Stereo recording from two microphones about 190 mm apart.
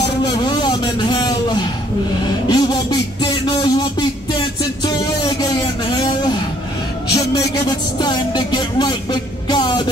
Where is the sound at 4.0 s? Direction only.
20° left (ahead or behind).